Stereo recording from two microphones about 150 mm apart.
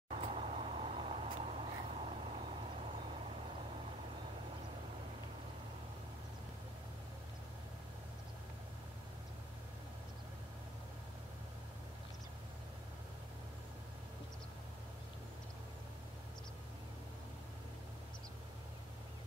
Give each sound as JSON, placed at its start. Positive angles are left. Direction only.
{"t": 0.1, "sound": "vehicle", "side_deg": -40}